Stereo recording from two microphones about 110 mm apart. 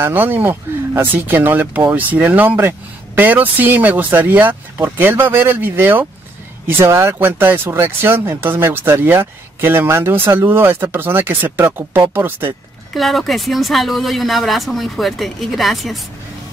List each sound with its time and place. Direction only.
0.0 s speech: 20° right (ahead or behind)
12.9 s speech: centre (ahead or behind)